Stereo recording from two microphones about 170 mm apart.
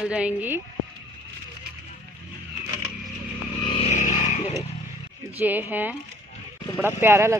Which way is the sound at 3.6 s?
35° left (ahead or behind).